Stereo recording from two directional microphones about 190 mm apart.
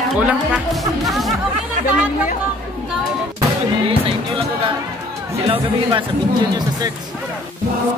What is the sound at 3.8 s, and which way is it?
Music, 25° right (ahead or behind).